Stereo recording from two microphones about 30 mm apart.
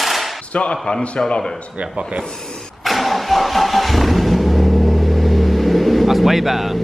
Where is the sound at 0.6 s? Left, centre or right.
Left.